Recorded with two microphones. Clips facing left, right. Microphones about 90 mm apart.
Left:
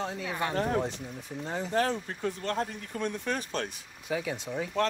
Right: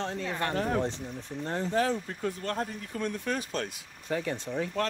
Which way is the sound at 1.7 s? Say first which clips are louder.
Left 1 dB; 45° left (ahead or behind).